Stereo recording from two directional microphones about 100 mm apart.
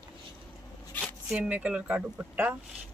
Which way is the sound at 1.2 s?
10° right (ahead or behind).